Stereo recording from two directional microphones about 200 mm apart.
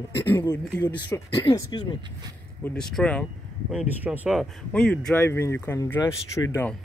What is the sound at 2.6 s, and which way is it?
Speech, 5° left (ahead or behind).